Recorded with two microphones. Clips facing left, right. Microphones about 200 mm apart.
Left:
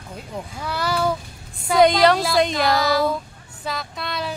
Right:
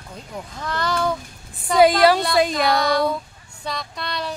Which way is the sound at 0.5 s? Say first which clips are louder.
Even; 10° left (ahead or behind).